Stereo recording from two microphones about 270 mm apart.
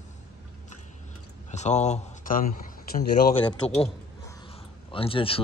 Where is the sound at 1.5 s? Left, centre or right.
Left.